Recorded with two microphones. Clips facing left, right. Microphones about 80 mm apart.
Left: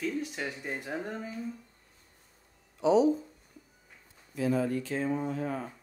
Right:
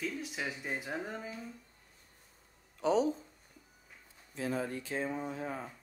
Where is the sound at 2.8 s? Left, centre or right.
Right.